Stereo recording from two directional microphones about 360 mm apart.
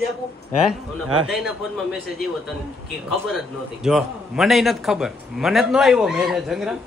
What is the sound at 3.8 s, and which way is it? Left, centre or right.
A man's voice, centre.